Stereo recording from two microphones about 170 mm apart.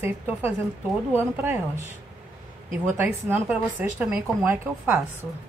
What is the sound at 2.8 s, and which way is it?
A woman's voice, 10° right (ahead or behind).